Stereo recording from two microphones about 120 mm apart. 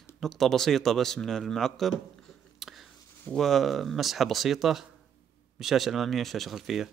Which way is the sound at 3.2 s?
5° left (ahead or behind).